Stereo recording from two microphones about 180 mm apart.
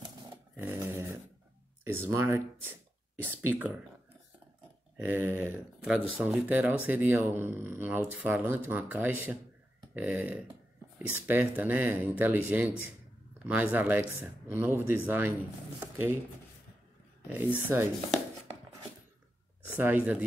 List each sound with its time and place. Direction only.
0.6 s a sound: 15° right (ahead or behind)
1.9 s speech: 15° right (ahead or behind)
4.9 s speech: 10° right (ahead or behind)
17.3 s speech: 10° right (ahead or behind)
19.7 s speech: 10° right (ahead or behind)